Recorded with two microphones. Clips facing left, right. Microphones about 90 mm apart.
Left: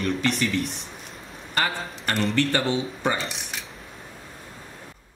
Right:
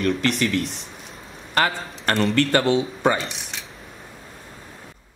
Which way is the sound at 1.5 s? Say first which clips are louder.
Right 4 dB; 80° right.